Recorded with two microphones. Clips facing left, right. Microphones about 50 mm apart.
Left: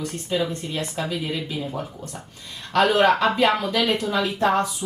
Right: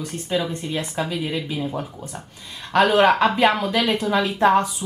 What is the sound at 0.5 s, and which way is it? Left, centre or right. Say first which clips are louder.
Speech: right 2 dB; right.